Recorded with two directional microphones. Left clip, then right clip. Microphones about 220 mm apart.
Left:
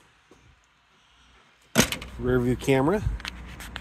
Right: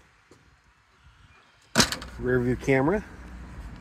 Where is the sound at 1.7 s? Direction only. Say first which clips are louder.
Even; 30° left (ahead or behind).